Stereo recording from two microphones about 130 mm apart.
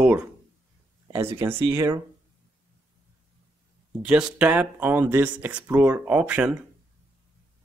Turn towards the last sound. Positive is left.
turn(degrees=-10)  # may be behind; listen again after turning